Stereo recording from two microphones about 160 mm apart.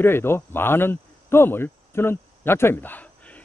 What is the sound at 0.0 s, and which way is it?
Speech, 15° left (ahead or behind).